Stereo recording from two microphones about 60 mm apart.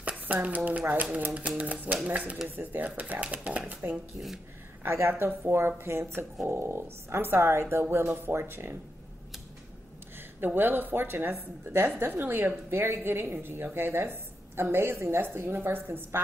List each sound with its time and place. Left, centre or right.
0.3 s speech: right
4.8 s a woman's voice: right
10.1 s a woman's voice: right